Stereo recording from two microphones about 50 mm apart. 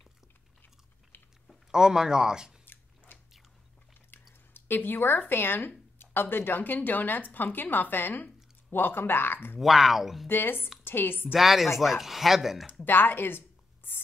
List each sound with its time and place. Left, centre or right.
1.1 s typing: left
1.7 s speech: centre
2.6 s a sound: left
4.6 s speech: left
9.6 s speech: centre
10.2 s a woman's voice: left
11.3 s speech: centre
12.8 s speech: left
13.9 s writing: left